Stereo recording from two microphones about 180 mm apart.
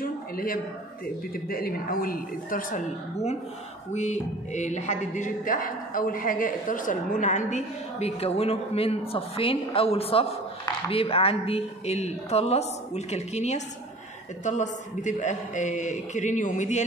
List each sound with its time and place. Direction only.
0.0 s a sound: 55° left (ahead or behind)
1.3 s a man's voice: 55° left (ahead or behind)
3.9 s a woman's voice: 40° left (ahead or behind)